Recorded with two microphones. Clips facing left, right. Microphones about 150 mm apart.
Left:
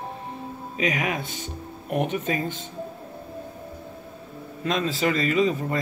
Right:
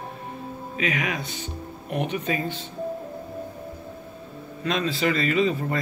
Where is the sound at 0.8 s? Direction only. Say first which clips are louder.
Left 2 dB; 40° left (ahead or behind).